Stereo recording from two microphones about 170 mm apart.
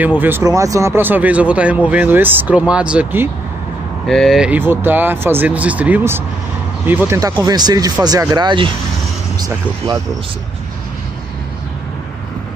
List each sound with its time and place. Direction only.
0.0 s speech: 10° right (ahead or behind); by 8.7 s 30° right (ahead or behind)